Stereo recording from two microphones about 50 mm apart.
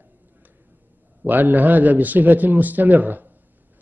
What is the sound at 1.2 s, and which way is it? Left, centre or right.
A man's voice, right.